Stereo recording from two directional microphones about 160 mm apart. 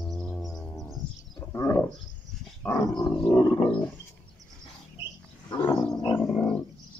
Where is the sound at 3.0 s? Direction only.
5° left (ahead or behind).